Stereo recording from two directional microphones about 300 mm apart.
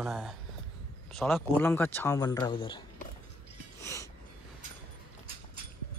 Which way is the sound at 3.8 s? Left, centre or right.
Centre.